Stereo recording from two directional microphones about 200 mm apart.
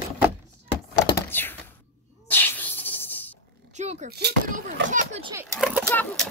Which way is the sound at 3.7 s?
35° right (ahead or behind).